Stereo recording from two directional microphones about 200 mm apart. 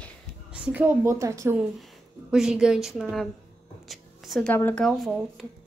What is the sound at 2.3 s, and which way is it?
Speech, 5° right (ahead or behind).